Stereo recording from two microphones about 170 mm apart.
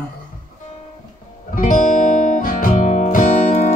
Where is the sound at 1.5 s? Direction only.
50° left (ahead or behind).